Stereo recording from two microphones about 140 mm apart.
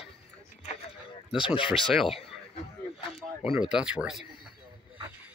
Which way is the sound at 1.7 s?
Centre (ahead or behind).